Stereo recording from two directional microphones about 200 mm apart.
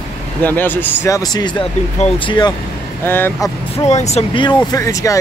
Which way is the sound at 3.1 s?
10° left (ahead or behind).